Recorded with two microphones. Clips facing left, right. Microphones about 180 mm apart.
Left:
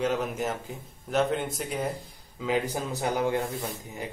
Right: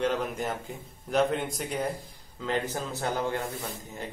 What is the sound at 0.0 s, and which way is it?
A man's voice, 5° left (ahead or behind).